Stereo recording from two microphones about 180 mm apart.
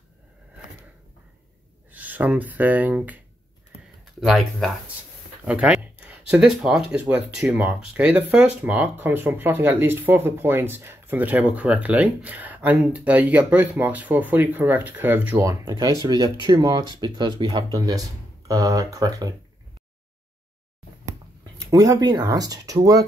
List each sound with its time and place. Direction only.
1.9 s speech: 10° right (ahead or behind)
15.8 s speech: 20° right (ahead or behind)
21.6 s speech: 20° right (ahead or behind)